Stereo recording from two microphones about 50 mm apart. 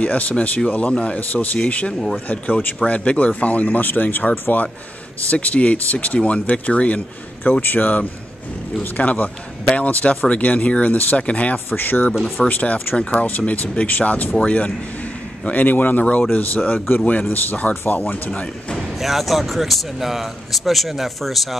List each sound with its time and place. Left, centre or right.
0.0 s speech: left
1.3 s speech: left
1.9 s speech: centre
2.3 s speech: left
5.3 s speech: left
11.7 s speech: left
12.9 s speech: left
13.5 s speech: left
18.8 s speech: centre